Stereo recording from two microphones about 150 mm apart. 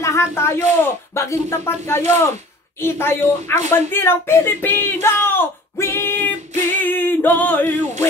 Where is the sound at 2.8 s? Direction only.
15° left (ahead or behind).